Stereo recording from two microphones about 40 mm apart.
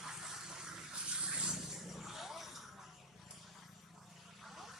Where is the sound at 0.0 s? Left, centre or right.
Centre.